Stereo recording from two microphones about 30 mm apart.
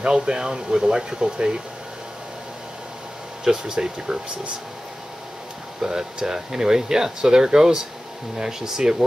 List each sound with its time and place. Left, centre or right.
0.0 s speech: right
3.4 s speech: right
5.8 s speech: right